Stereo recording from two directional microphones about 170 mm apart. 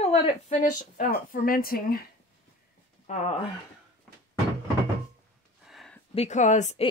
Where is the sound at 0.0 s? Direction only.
40° left (ahead or behind); by 2.0 s 60° left (ahead or behind).